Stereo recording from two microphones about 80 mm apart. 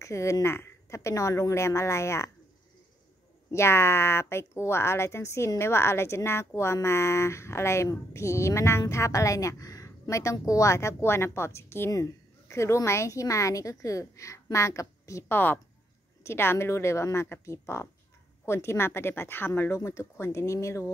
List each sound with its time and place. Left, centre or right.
0.0 s a woman's voice: left
3.5 s a woman's voice: left
15.3 s a woman's voice: left